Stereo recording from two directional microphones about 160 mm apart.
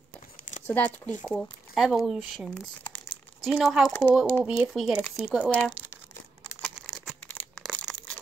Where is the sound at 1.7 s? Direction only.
Centre (ahead or behind).